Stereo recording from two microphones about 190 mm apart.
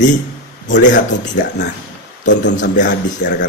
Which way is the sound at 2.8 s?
65° left (ahead or behind).